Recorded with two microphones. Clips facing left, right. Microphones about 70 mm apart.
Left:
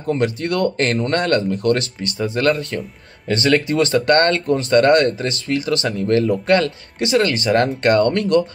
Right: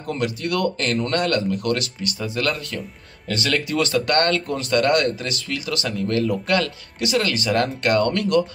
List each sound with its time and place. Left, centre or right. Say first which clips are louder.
0.0 s speech: left 5 dB; left